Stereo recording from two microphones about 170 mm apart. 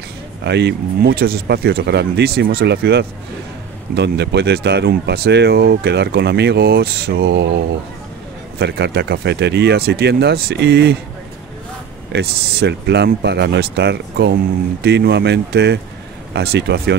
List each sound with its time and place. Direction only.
0.4 s speech: 85° right
8.5 s speech: 80° right
12.1 s speech: 75° right (ahead or behind)